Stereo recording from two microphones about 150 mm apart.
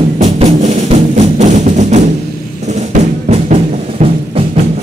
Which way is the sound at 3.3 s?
40° right (ahead or behind).